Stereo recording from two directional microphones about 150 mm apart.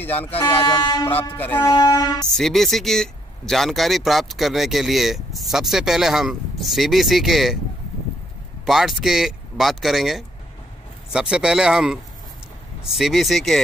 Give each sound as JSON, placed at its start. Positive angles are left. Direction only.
{"t": 0.0, "sound": "speech", "side_deg": 10}
{"t": 0.5, "sound": "speech", "side_deg": 30}
{"t": 1.3, "sound": "speech", "side_deg": 10}
{"t": 1.7, "sound": "a sound", "side_deg": 25}
{"t": 2.2, "sound": "speech", "side_deg": 0}
{"t": 8.6, "sound": "speech", "side_deg": 0}